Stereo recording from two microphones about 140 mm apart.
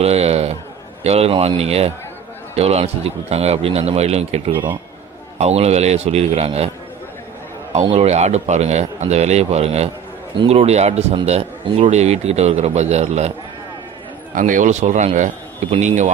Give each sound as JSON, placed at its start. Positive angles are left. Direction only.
{"t": 0.0, "sound": "a sound", "side_deg": -45}
{"t": 1.0, "sound": "a man's voice", "side_deg": -45}
{"t": 7.8, "sound": "speech", "side_deg": -40}
{"t": 8.1, "sound": "a man's voice", "side_deg": -55}
{"t": 14.3, "sound": "a man's voice", "side_deg": -70}